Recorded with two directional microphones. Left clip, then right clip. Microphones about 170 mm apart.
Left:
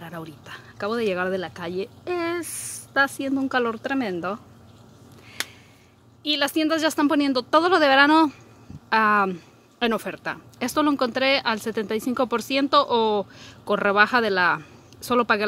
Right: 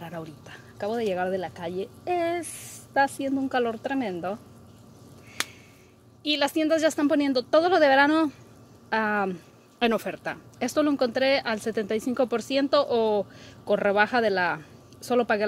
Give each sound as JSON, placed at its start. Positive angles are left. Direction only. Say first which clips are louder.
{"t": 0.0, "sound": "speech", "louder": "left 1 dB", "side_deg": 5}
{"t": 0.7, "sound": "speech", "louder": "left 2 dB", "side_deg": 25}
{"t": 6.2, "sound": "speech", "louder": "left 2 dB", "side_deg": 5}